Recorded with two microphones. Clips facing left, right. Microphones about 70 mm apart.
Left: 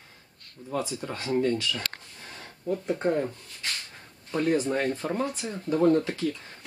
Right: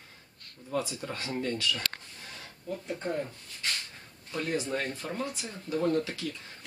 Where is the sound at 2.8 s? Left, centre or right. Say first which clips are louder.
Left 7 dB; left.